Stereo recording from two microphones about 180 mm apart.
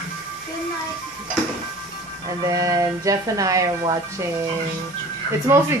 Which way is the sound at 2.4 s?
20° right (ahead or behind).